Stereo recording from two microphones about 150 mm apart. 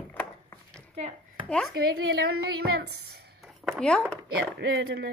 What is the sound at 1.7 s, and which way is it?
A woman's voice, 90° right.